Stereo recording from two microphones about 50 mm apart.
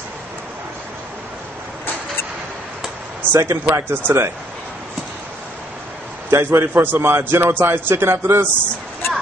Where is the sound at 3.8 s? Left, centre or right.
Right.